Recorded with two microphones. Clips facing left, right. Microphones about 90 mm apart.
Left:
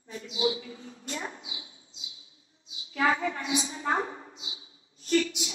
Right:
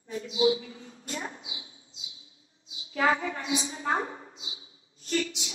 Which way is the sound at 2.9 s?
30° right (ahead or behind).